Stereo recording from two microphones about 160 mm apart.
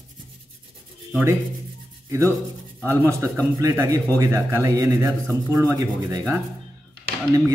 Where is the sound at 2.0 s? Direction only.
20° right (ahead or behind).